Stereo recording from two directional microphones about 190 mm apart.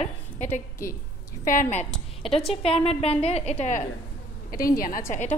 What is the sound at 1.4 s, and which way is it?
A woman's voice, 45° left (ahead or behind).